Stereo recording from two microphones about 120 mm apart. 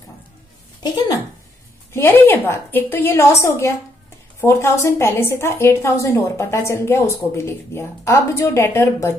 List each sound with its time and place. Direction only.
2.0 s a woman's voice: 20° left (ahead or behind)